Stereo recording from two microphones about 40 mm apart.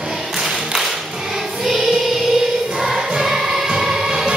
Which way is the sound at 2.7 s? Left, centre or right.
Centre.